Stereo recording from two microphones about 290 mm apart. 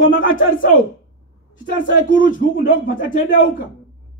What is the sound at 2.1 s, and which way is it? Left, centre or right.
Speech, left.